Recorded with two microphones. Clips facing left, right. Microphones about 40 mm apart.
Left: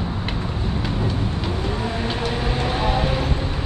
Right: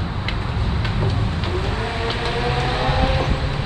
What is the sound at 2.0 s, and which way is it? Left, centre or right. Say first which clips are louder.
Vehicle: right 2 dB; right.